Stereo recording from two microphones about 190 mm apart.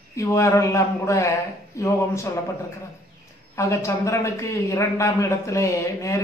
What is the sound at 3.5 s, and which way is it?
Speech, 15° left (ahead or behind).